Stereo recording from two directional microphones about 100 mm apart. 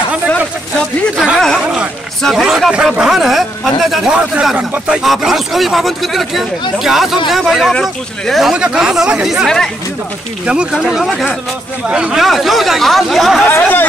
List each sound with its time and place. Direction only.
1.1 s a sound: 10° right (ahead or behind)
2.2 s speech: 5° right (ahead or behind)
13.5 s speech: 20° left (ahead or behind)